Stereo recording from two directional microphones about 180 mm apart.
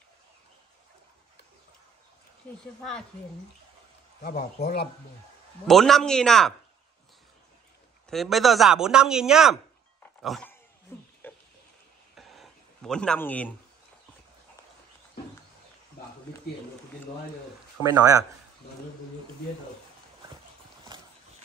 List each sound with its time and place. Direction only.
4.3 s speech: 40° left (ahead or behind)
5.7 s a man's voice: centre (ahead or behind)
8.1 s a man's voice: centre (ahead or behind)
10.9 s a sound: 15° left (ahead or behind)
12.2 s a sound: centre (ahead or behind)
17.8 s speech: 25° left (ahead or behind)